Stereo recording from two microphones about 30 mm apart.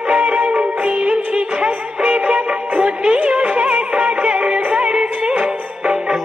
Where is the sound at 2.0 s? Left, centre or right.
Right.